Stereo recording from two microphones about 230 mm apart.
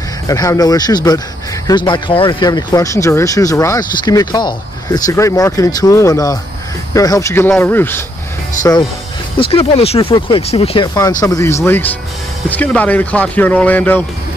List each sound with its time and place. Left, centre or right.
0.3 s speech: centre
9.4 s speech: left; by 14.0 s centre